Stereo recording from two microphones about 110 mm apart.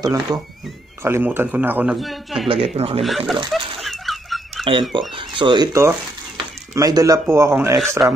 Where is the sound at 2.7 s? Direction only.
60° right (ahead or behind).